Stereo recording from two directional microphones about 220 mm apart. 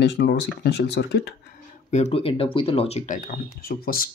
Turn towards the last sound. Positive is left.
turn(degrees=40)  # may be behind; listen again after turning